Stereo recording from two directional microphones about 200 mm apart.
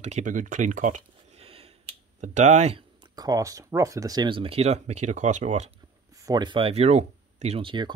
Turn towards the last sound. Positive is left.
turn(degrees=-25)  # may be behind; listen again after turning